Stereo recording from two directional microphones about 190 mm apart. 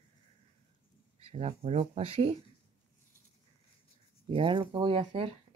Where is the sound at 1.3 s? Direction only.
35° right (ahead or behind).